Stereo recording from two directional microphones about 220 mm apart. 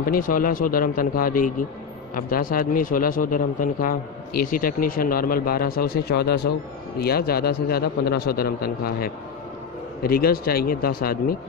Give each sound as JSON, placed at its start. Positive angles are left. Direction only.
{"t": 0.0, "sound": "a man's voice", "side_deg": 40}